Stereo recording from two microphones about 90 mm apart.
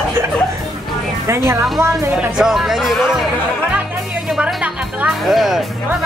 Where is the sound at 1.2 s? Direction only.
30° right (ahead or behind).